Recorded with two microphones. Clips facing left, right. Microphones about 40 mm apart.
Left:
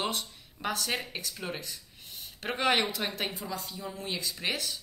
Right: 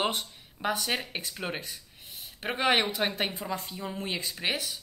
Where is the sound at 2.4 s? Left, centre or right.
Centre; by 4.1 s right.